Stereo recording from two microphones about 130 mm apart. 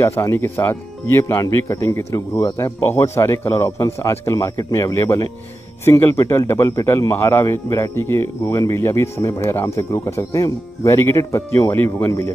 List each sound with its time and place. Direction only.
0.0 s speech: 20° left (ahead or behind)